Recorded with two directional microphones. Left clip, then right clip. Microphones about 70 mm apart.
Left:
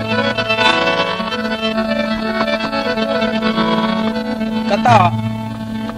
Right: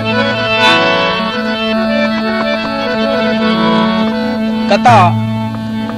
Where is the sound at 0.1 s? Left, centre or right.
Left.